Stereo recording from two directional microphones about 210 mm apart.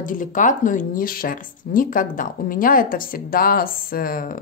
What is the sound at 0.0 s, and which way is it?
A woman's voice, 40° left (ahead or behind).